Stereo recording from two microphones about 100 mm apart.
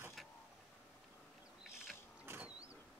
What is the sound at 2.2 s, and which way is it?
Vehicle, 20° right (ahead or behind).